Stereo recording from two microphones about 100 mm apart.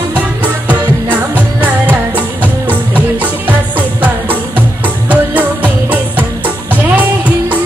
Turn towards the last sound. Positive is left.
turn(degrees=-15)  # may be behind; listen again after turning